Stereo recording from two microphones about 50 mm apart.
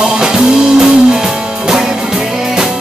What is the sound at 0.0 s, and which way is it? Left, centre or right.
Music, centre.